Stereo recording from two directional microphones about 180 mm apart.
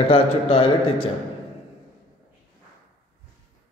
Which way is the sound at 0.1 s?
30° left (ahead or behind).